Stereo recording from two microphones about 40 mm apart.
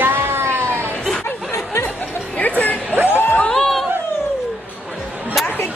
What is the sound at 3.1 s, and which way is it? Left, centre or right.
Speech, left.